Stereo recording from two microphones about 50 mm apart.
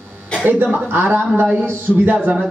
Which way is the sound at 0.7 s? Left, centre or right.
Right.